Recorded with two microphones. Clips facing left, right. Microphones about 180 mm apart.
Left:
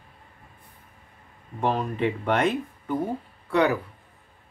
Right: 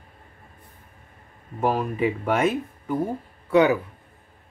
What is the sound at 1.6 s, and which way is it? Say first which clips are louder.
Speech: right 2 dB; 5° right (ahead or behind).